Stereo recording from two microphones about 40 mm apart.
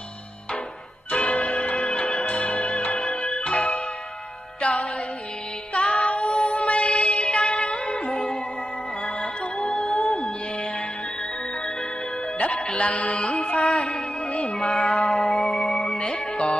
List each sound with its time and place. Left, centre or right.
1.1 s music: left
1.8 s music: left
2.2 s music: left
12.4 s music: left
13.1 s music: centre
13.4 s music: left
13.7 s music: centre